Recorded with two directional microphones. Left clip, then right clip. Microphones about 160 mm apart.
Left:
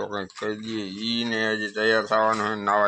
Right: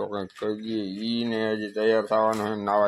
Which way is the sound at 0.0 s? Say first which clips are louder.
Even; 15° right (ahead or behind).